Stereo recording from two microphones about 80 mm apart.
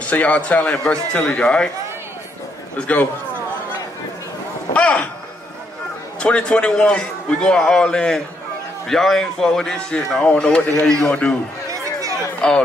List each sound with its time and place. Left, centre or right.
0.0 s a man's voice: centre
2.8 s speech: centre
4.7 s a man's voice: centre
6.1 s a man's voice: centre
11.7 s a sound: right
12.4 s speech: centre